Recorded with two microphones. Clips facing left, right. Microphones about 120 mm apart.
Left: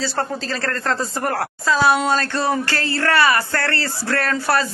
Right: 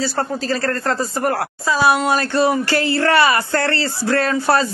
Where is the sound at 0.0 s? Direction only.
5° right (ahead or behind).